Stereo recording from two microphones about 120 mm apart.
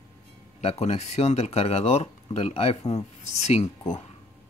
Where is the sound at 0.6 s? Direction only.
65° left (ahead or behind).